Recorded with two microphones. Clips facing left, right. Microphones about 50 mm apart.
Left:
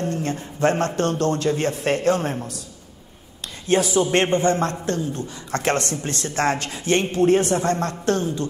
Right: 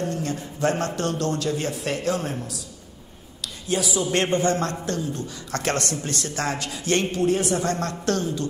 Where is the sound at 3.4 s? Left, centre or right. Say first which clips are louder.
Left 6 dB; left.